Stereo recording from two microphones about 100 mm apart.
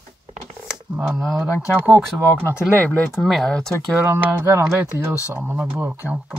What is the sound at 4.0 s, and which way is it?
Speech, 25° right (ahead or behind).